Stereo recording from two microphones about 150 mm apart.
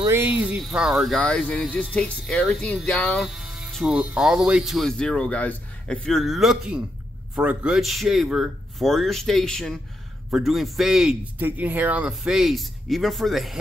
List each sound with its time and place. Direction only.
0.1 s a man's voice: 10° right (ahead or behind); by 3.2 s 10° left (ahead or behind)
3.2 s a man's voice: 5° right (ahead or behind)